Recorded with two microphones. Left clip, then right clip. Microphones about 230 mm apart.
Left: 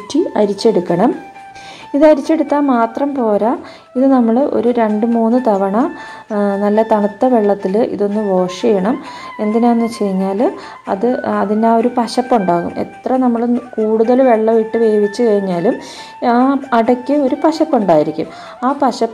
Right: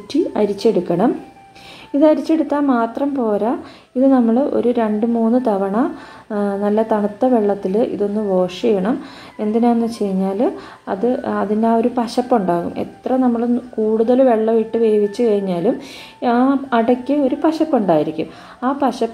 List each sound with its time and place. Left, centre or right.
0.1 s a woman's voice: centre